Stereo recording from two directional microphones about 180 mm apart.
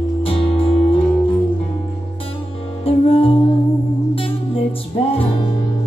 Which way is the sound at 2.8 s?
30° left (ahead or behind).